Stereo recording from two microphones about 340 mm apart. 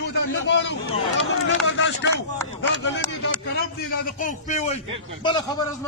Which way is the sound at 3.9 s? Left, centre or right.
Left.